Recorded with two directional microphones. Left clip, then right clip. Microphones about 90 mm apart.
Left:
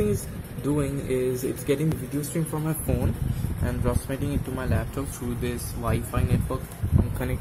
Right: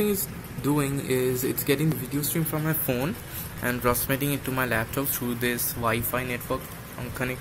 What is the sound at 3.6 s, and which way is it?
Speech, 5° right (ahead or behind).